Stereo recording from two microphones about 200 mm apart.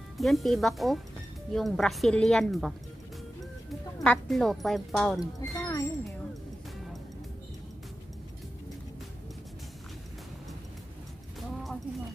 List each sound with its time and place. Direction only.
0.2 s speech: centre (ahead or behind)
4.0 s speech: 5° left (ahead or behind)
5.2 s speech: 15° left (ahead or behind)